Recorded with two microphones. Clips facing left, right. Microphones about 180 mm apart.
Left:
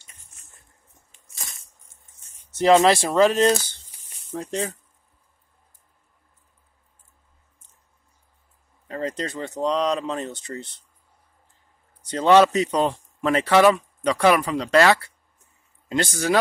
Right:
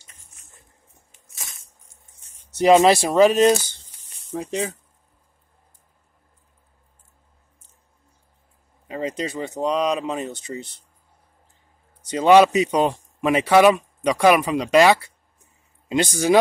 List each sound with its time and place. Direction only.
1.3 s a sound: centre (ahead or behind)
2.3 s a man's voice: 15° right (ahead or behind)
8.8 s speech: 10° right (ahead or behind)
12.1 s a man's voice: 10° right (ahead or behind)